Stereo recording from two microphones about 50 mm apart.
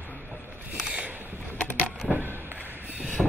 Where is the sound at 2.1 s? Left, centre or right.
Centre.